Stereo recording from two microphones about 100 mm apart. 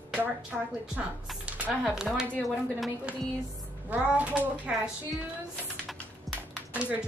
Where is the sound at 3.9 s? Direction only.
15° right (ahead or behind).